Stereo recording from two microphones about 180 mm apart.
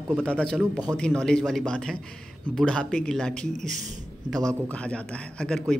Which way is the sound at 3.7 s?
40° right (ahead or behind).